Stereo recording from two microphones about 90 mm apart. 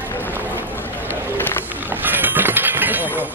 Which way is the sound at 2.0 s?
20° right (ahead or behind).